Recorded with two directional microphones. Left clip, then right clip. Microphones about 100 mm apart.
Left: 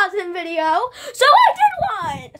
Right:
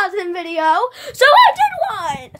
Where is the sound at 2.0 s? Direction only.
35° right (ahead or behind).